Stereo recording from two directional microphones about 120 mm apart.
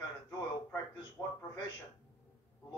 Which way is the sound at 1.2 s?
5° right (ahead or behind).